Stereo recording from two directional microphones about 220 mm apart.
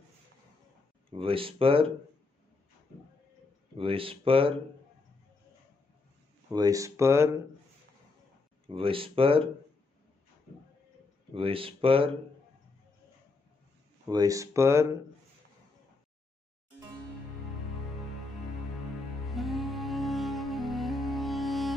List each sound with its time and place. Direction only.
1.1 s speech: 25° right (ahead or behind)
3.7 s speech: 25° right (ahead or behind)
6.5 s speech: 15° right (ahead or behind)
8.6 s speech: 25° right (ahead or behind)
11.3 s speech: 25° right (ahead or behind)
14.0 s speech: 15° right (ahead or behind)
19.2 s music: centre (ahead or behind)